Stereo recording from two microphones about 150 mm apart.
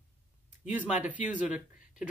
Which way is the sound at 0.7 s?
10° right (ahead or behind).